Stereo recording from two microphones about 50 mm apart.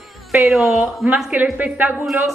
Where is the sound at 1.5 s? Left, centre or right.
Right.